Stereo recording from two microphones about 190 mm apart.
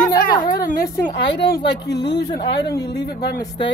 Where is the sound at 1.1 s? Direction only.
65° left (ahead or behind).